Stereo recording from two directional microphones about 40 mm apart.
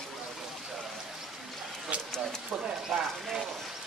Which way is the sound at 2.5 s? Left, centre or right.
Centre.